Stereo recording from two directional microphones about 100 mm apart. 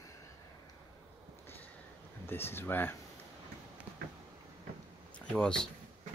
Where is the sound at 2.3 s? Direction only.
25° left (ahead or behind).